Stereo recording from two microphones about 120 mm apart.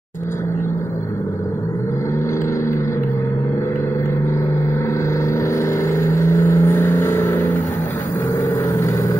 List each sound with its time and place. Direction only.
5.9 s vehicle: 25° left (ahead or behind)